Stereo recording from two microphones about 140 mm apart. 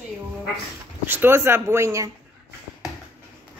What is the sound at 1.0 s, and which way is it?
Speech, 15° right (ahead or behind).